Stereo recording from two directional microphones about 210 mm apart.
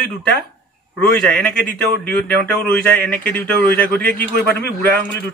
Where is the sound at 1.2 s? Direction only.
5° left (ahead or behind).